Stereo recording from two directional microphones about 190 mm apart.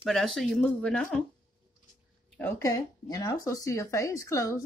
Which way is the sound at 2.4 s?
20° left (ahead or behind).